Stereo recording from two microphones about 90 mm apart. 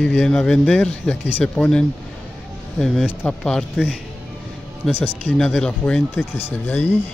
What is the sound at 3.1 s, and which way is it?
Speech, 10° left (ahead or behind).